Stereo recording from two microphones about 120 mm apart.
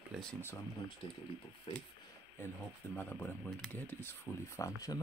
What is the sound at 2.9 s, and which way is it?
Speech, 15° left (ahead or behind).